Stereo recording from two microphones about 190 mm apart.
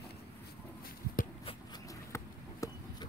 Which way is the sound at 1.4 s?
30° left (ahead or behind).